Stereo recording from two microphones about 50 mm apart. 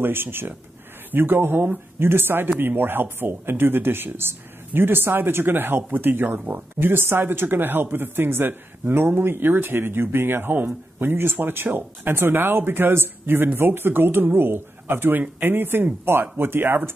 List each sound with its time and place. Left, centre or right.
0.0 s speech: right